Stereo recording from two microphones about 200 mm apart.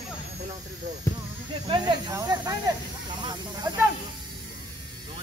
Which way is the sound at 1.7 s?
20° right (ahead or behind).